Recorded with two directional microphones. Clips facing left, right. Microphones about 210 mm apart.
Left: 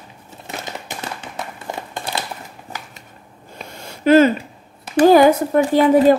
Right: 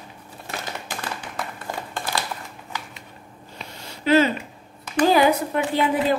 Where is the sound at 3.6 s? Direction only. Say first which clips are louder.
Left 4 dB; 50° left (ahead or behind).